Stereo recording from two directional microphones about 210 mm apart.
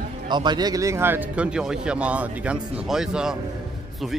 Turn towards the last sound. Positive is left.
turn(degrees=-5)  # may be behind; listen again after turning